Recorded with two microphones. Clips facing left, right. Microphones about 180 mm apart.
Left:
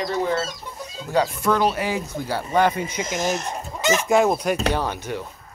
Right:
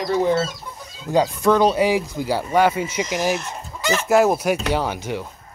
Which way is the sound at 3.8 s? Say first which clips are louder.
Left 1 dB; 20° left (ahead or behind).